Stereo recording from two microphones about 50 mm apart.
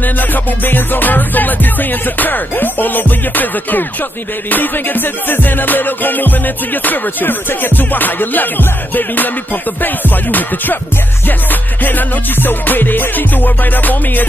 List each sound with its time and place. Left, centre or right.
0.0 s music: left
11.8 s music: left